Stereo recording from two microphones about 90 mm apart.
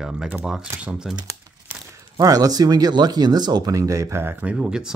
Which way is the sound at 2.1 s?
45° right (ahead or behind).